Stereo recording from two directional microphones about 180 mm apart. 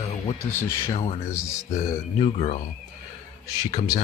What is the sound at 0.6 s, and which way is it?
Speech, 15° left (ahead or behind).